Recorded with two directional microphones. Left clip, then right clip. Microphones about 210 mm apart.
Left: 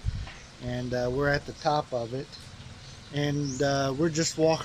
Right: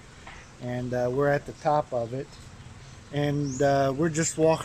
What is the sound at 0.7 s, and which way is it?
Speech, 20° right (ahead or behind).